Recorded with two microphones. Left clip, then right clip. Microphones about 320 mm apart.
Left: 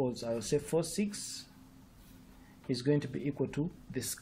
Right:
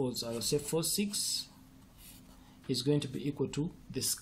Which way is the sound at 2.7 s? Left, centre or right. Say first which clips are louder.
Even; centre.